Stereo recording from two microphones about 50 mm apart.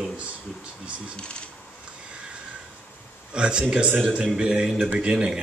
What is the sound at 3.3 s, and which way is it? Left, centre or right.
A man's voice, centre.